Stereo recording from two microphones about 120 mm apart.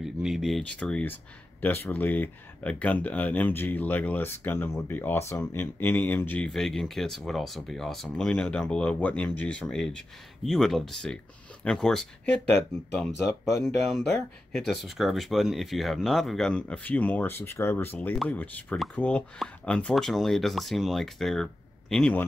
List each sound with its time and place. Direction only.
0.0 s speech: centre (ahead or behind); by 6.4 s 15° left (ahead or behind)
6.4 s speech: 5° left (ahead or behind)
13.2 s speech: 25° left (ahead or behind)
13.8 s speech: centre (ahead or behind)